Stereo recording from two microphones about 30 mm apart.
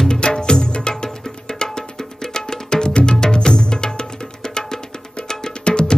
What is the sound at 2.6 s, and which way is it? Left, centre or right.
Music, left.